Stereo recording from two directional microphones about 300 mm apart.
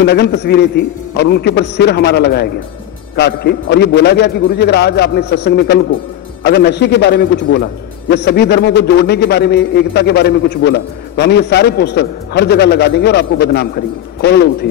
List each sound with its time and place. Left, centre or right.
0.0 s a man's voice: left